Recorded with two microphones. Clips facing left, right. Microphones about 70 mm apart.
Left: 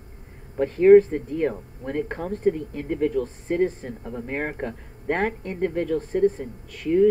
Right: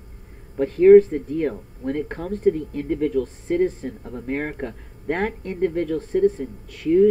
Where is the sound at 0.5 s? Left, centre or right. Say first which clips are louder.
Right 2 dB; centre.